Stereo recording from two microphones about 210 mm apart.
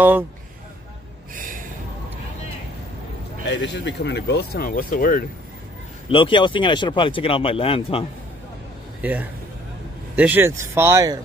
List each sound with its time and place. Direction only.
1.3 s gasp: 40° right (ahead or behind)
3.4 s speech: 60° left (ahead or behind); by 5.2 s 40° left (ahead or behind)
6.0 s speech: 25° left (ahead or behind)
9.0 s speech: 10° right (ahead or behind)